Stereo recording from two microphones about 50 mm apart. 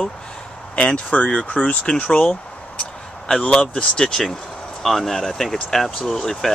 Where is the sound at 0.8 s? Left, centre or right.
Left.